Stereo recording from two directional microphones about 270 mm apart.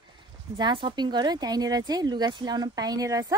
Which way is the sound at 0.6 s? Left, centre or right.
Centre.